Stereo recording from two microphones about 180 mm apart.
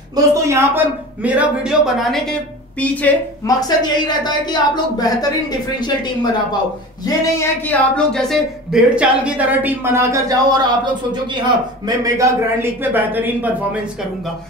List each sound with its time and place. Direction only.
0.1 s a woman's voice: 20° right (ahead or behind); by 3.2 s 10° left (ahead or behind)
3.4 s a woman's voice: 20° left (ahead or behind)
7.1 s speech: 10° left (ahead or behind); by 13.7 s 10° right (ahead or behind)